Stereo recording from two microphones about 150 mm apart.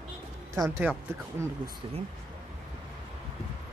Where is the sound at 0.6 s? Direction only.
15° right (ahead or behind).